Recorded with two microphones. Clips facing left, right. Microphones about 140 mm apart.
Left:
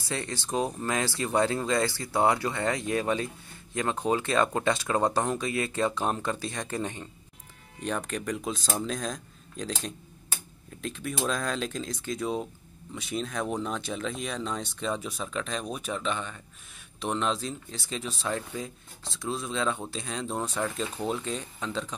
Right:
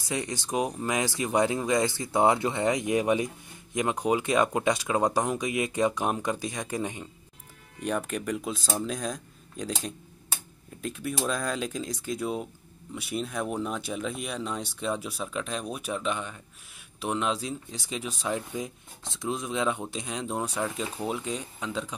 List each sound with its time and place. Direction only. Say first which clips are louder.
0.1 s speech: right 1 dB; 15° right (ahead or behind)